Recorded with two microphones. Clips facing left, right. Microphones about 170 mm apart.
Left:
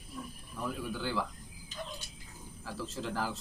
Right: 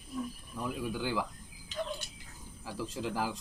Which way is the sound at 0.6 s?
15° right (ahead or behind).